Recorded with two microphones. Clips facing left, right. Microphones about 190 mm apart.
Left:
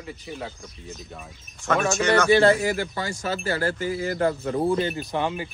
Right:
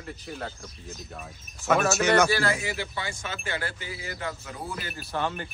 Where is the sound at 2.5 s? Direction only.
50° left (ahead or behind).